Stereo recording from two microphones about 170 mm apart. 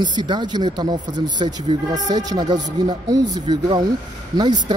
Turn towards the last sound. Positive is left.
turn(degrees=-25)  # may be behind; listen again after turning